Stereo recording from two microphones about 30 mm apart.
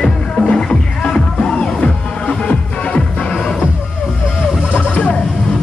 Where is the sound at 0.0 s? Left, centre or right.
Left.